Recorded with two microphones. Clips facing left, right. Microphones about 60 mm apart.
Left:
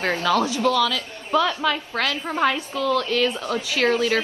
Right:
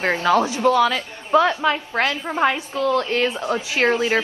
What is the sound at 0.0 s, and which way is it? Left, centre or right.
A woman's voice, right.